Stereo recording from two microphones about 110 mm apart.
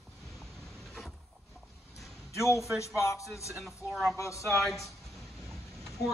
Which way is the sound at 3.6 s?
Centre (ahead or behind).